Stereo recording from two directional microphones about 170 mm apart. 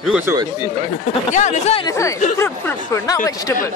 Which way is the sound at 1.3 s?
45° left (ahead or behind).